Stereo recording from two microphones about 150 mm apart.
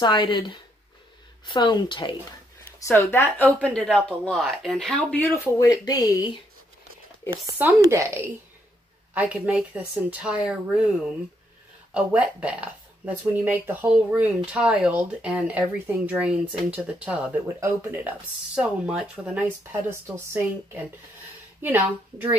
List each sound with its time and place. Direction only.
0.0 s speech: 30° left (ahead or behind)
2.8 s a man's voice: 15° left (ahead or behind)
5.7 s speech: 25° left (ahead or behind)
7.8 s speech: 20° right (ahead or behind)
11.9 s a woman's voice: 10° right (ahead or behind)